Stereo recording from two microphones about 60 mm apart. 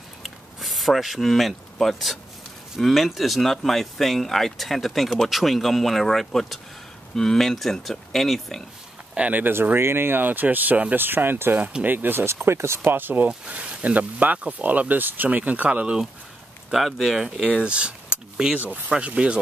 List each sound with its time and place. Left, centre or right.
0.2 s a sound: centre
2.8 s speech: centre
9.1 s speech: right
9.5 s speech: right
13.5 s speech: right
16.7 s speech: centre
17.5 s speech: centre